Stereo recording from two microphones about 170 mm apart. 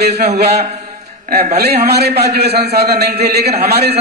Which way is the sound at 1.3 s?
65° right (ahead or behind).